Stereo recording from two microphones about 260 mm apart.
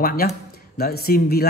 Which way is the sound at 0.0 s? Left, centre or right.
Left.